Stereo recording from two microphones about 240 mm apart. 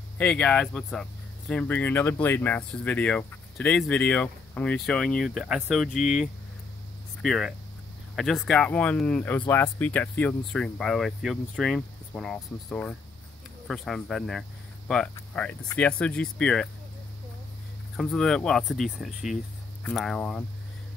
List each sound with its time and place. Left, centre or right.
0.2 s speech: centre
17.9 s speech: centre